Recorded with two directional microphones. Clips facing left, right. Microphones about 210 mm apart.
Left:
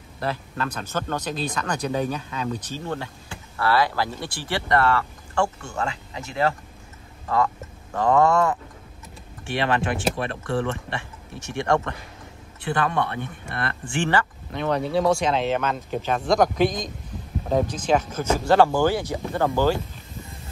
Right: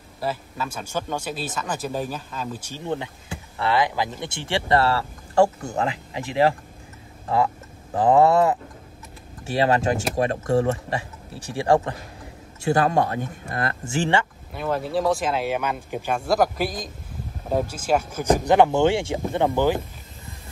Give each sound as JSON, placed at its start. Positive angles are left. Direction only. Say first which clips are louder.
{"t": 0.2, "sound": "speech", "louder": "even", "side_deg": -5}
{"t": 2.7, "sound": "speech", "louder": "right 2 dB", "side_deg": -15}
{"t": 7.9, "sound": "speech", "louder": "right 2 dB", "side_deg": -30}
{"t": 14.5, "sound": "speech", "louder": "left 2 dB", "side_deg": -5}